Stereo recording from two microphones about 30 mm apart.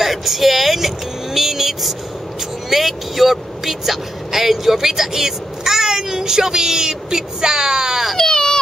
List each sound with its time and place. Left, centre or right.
0.0 s vehicle: centre
2.7 s speech: centre; by 8.0 s right
8.3 s baby cry: left